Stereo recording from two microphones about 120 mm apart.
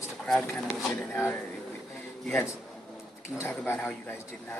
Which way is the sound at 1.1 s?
15° left (ahead or behind).